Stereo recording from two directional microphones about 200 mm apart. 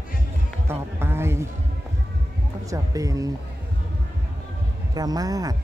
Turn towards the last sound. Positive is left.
turn(degrees=-20)  # may be behind; listen again after turning